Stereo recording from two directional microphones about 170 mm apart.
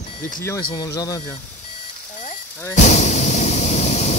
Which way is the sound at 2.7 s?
45° left (ahead or behind).